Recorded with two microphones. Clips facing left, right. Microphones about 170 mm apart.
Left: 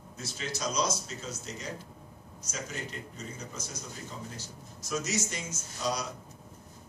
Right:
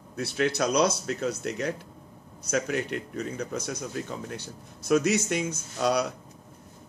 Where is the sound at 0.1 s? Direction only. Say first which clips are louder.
Right 12 dB; 65° right (ahead or behind).